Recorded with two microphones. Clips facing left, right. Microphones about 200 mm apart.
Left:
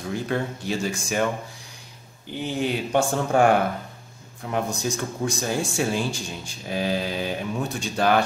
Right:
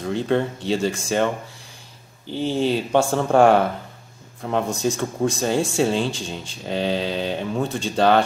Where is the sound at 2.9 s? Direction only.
65° right (ahead or behind).